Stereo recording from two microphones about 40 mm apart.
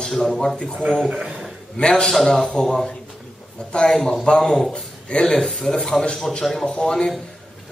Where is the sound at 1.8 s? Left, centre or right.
Centre.